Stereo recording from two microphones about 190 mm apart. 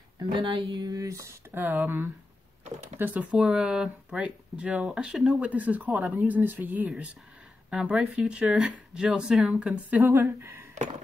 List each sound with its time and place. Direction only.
0.2 s speech: 25° right (ahead or behind)